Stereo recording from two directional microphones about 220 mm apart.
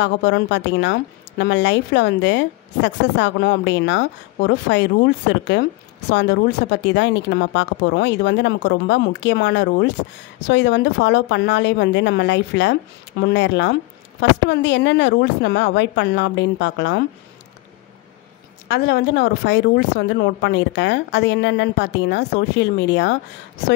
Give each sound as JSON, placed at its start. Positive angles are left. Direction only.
{"t": 0.0, "sound": "a woman's voice", "side_deg": 55}
{"t": 18.7, "sound": "a woman's voice", "side_deg": 50}